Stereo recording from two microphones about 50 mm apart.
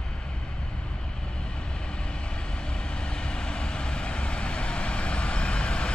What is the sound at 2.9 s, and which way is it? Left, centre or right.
Vehicle, centre.